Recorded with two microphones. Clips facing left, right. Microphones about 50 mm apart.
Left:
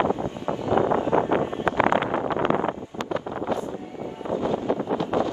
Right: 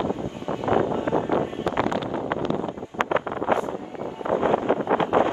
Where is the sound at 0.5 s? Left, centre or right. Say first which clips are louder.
Right 1 dB; right.